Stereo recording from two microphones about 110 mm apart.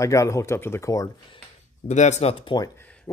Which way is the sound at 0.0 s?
30° left (ahead or behind).